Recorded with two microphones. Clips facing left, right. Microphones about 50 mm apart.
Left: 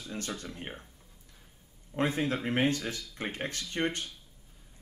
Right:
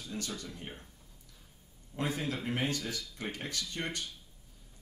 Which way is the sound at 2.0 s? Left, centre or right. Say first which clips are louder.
Left 5 dB; left.